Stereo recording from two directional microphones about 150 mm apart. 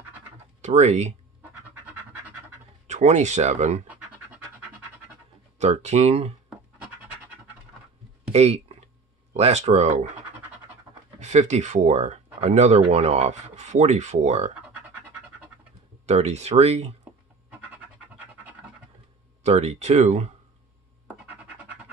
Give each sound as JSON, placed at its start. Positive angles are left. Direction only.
{"t": 0.6, "sound": "speech", "side_deg": -50}
{"t": 2.9, "sound": "speech", "side_deg": -50}
{"t": 3.8, "sound": "scratch", "side_deg": -10}
{"t": 5.6, "sound": "speech", "side_deg": -50}
{"t": 8.3, "sound": "speech", "side_deg": -45}
{"t": 11.1, "sound": "speech", "side_deg": -50}
{"t": 16.1, "sound": "speech", "side_deg": -45}
{"t": 17.5, "sound": "pant", "side_deg": -10}
{"t": 19.4, "sound": "speech", "side_deg": -45}